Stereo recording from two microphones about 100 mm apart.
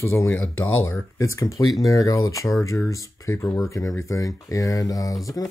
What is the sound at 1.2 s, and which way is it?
Speech, 30° left (ahead or behind).